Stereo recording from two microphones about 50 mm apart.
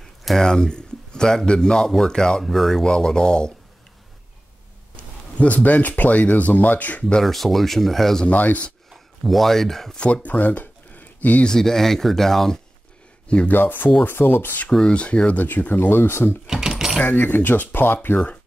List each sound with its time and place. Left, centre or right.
0.2 s a man's voice: centre
4.9 s speech: left
7.2 s speech: centre
8.3 s speech: left
8.9 s speech: centre
9.9 s speech: left
11.4 s a man's voice: centre
13.5 s speech: left
14.9 s speech: left
15.4 s speech: left
16.4 s a sound: centre
17.0 s speech: left
18.1 s speech: left